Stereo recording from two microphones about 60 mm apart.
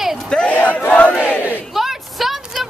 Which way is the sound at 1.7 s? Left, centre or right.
Centre.